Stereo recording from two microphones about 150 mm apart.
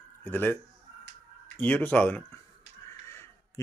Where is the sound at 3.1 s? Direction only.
15° left (ahead or behind).